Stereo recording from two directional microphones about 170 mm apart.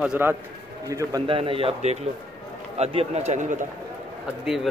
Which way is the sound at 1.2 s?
30° right (ahead or behind).